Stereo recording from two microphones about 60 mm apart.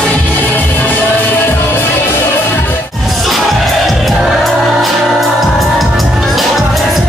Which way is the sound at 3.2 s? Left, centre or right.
Centre.